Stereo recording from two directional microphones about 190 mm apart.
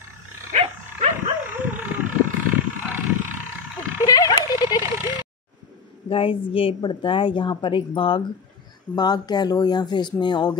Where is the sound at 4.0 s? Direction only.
20° left (ahead or behind).